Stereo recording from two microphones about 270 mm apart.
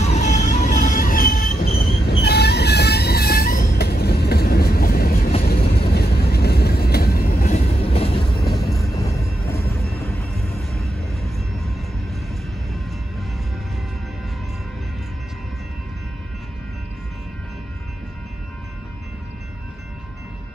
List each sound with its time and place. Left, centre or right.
0.0 s music: left
2.2 s train: left; by 8.4 s centre
8.9 s music: centre
11.2 s train: centre